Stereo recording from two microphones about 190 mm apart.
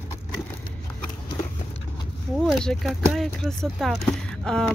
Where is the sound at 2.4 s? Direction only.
Centre (ahead or behind).